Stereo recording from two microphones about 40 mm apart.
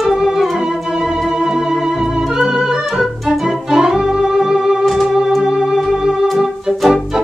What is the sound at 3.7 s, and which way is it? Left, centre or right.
Music, centre.